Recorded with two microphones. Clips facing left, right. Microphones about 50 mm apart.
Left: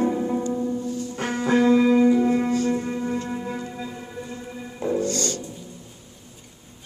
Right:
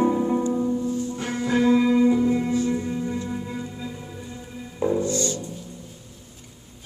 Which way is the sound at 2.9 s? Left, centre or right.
Left.